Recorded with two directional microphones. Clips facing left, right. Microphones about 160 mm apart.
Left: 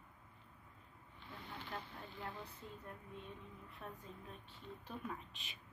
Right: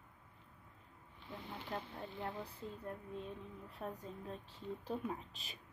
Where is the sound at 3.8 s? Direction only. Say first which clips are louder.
Right 7 dB; 40° right (ahead or behind).